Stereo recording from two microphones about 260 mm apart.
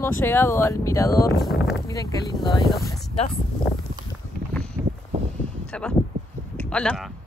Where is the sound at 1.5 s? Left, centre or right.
Left.